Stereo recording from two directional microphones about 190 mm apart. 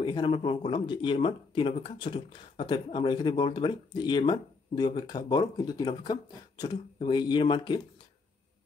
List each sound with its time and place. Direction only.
0.0 s speech: 25° left (ahead or behind)